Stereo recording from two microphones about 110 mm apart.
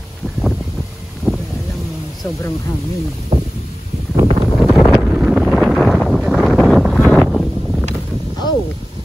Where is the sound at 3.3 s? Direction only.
90° right.